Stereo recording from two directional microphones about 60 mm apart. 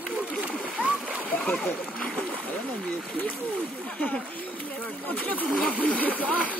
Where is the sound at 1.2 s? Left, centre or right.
Left.